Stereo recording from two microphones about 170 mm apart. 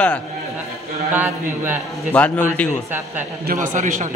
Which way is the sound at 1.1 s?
10° right (ahead or behind).